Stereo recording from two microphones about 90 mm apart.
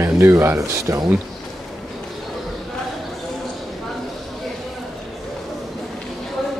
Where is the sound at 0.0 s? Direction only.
30° right (ahead or behind).